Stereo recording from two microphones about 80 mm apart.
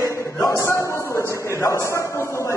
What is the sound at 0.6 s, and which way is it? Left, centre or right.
A man's voice, left.